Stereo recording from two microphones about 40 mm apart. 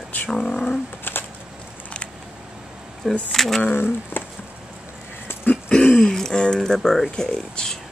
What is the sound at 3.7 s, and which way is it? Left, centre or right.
Speech, left.